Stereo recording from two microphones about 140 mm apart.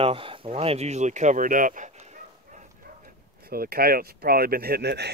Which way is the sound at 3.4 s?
90° right.